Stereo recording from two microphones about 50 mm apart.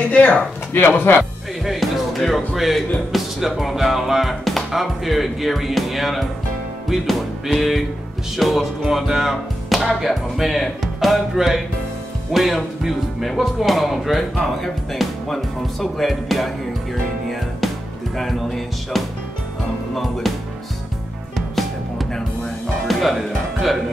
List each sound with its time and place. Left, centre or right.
0.1 s speech: left
0.7 s speech: left
1.6 s speech: centre
18.1 s speech: centre
21.4 s music: centre
22.8 s speech: centre